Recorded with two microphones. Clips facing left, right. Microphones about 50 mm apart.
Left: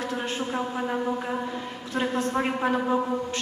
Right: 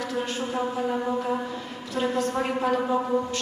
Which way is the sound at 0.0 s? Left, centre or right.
Left.